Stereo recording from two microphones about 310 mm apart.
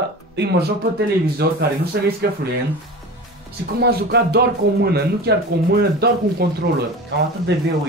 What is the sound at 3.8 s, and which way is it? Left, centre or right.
Speech, right.